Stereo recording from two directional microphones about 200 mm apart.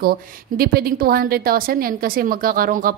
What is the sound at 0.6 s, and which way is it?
A woman's voice, 50° right (ahead or behind).